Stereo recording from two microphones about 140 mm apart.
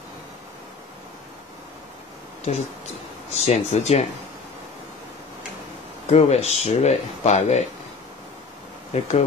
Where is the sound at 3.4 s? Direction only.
50° left (ahead or behind).